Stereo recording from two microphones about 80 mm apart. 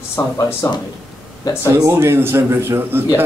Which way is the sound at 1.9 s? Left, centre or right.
Right.